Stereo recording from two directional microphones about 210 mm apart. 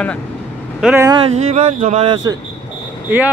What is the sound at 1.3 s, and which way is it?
Speech, 35° right (ahead or behind).